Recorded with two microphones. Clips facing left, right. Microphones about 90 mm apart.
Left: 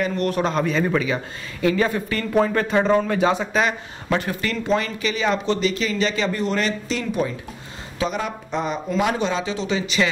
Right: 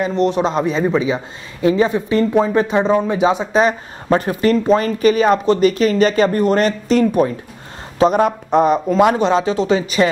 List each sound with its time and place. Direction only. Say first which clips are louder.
0.0 s speech: right 5 dB; 25° right (ahead or behind)
3.5 s speech: right 6 dB; 35° right (ahead or behind)